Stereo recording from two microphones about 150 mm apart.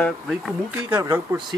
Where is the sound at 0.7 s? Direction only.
10° right (ahead or behind).